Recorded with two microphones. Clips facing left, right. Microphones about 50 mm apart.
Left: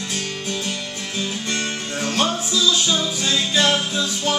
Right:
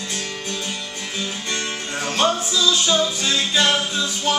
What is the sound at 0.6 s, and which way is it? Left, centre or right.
Music, centre.